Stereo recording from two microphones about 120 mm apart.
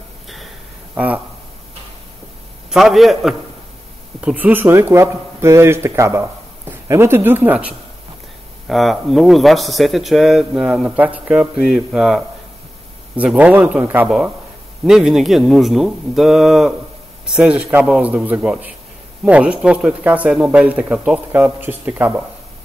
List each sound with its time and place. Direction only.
0.9 s speech: 10° right (ahead or behind)
2.7 s speech: centre (ahead or behind)
4.2 s speech: 10° right (ahead or behind)
8.6 s speech: centre (ahead or behind)